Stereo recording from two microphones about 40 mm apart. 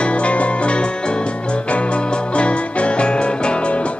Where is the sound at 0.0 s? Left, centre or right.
Left.